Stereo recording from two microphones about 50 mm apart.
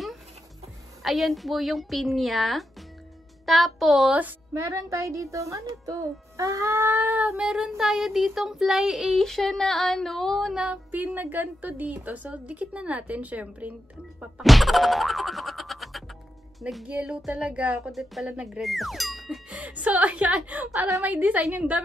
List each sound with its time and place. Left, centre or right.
1.0 s speech: centre
4.6 s a woman's voice: right
6.3 s music: right
6.8 s child singing: right
7.2 s child singing: centre
9.2 s speech: centre
10.5 s child singing: centre
10.9 s a woman's voice: right
14.4 s boing: centre
16.8 s child singing: centre
17.3 s a woman's voice: right
17.9 s speech: centre
19.6 s a woman's voice: right